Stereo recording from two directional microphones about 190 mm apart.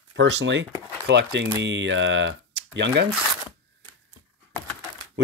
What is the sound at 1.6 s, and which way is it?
Speech, 75° right (ahead or behind).